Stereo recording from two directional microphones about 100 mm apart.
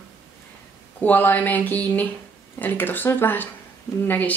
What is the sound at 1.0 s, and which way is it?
Speech, 20° left (ahead or behind).